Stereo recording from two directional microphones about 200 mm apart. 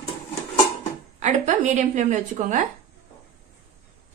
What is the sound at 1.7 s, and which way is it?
Speech, 35° right (ahead or behind).